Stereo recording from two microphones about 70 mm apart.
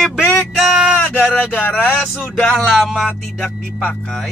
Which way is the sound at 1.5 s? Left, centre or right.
Left.